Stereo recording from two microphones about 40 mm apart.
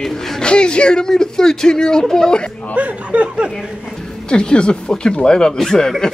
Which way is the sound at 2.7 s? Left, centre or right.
Right.